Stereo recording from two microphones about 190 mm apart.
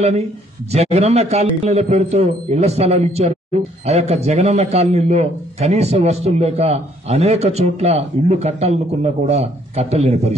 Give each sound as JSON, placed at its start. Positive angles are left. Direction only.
{"t": 0.7, "sound": "a man's voice", "side_deg": -35}